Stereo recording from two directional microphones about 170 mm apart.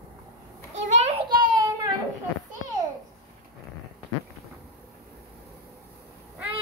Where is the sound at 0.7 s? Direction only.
40° right (ahead or behind).